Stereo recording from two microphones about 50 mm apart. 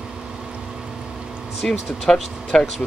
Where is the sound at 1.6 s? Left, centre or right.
Centre.